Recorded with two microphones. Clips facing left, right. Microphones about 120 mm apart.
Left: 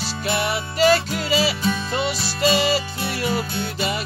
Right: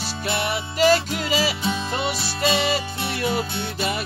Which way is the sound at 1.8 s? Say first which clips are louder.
Left 1 dB; 50° right (ahead or behind).